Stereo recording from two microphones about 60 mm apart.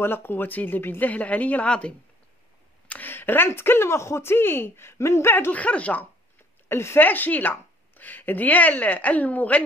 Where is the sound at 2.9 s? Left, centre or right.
Left.